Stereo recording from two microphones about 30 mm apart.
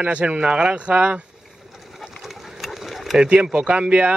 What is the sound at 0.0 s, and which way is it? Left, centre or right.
Speech, right.